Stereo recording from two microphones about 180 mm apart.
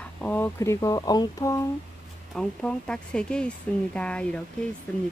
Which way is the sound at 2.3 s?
5° left (ahead or behind).